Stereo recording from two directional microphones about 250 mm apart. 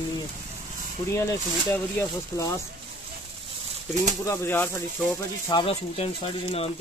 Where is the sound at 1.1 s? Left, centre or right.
Centre.